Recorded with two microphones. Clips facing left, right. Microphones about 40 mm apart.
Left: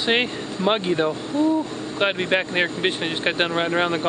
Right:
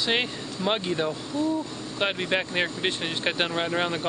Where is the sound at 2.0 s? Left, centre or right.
Centre.